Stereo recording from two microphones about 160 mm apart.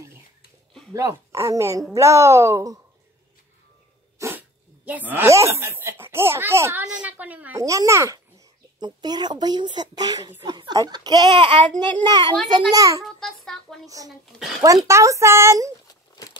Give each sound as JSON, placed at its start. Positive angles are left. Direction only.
{"t": 0.9, "sound": "a child's voice", "side_deg": -20}
{"t": 4.2, "sound": "a woman's voice", "side_deg": -10}
{"t": 7.6, "sound": "a child's voice", "side_deg": -20}
{"t": 13.0, "sound": "a sound", "side_deg": 0}
{"t": 13.8, "sound": "a child's voice", "side_deg": -20}